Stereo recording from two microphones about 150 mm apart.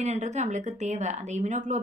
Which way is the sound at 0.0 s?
50° right (ahead or behind).